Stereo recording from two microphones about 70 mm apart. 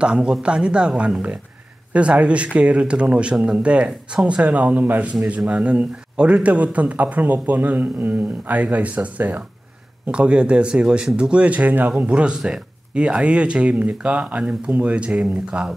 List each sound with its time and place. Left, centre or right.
0.0 s speech: centre